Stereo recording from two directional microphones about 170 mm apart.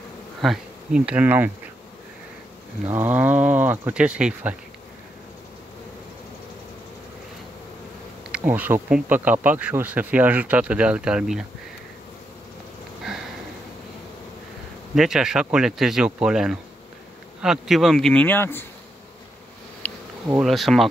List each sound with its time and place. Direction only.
0.4 s speech: 5° right (ahead or behind)
2.9 s bee: 10° right (ahead or behind)
8.3 s bee: 10° right (ahead or behind)
15.0 s speech: 5° right (ahead or behind); by 18.7 s 10° left (ahead or behind)
19.8 s bee: 10° left (ahead or behind)
20.3 s speech: centre (ahead or behind)